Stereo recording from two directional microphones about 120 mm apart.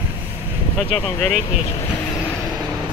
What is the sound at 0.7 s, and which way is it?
Speech, 5° left (ahead or behind).